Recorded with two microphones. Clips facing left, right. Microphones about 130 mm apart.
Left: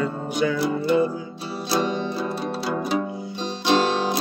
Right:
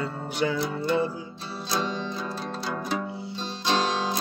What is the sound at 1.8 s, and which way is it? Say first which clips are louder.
Music: left 6 dB; 60° left (ahead or behind).